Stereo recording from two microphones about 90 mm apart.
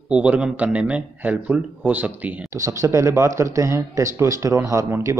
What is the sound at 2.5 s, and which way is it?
Speech, 35° right (ahead or behind).